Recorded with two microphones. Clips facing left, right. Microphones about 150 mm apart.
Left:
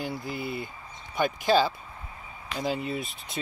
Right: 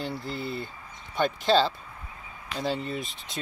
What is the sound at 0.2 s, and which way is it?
Speech, 10° left (ahead or behind).